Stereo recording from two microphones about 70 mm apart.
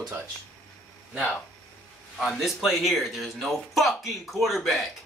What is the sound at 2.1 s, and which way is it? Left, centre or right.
Speech, centre.